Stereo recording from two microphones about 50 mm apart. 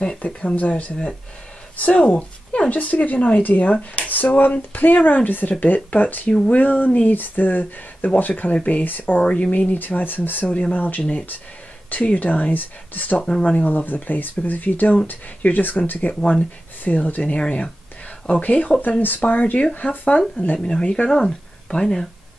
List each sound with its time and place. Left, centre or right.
0.6 s speech: left
3.7 s speech: left
4.1 s speech: left
9.2 s speech: left
9.7 s speech: left
10.4 s speech: left
13.2 s speech: centre
13.7 s speech: left
20.5 s speech: centre